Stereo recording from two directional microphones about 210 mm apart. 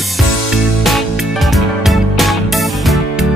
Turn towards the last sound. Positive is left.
turn(degrees=0)  # may be behind; listen again after turning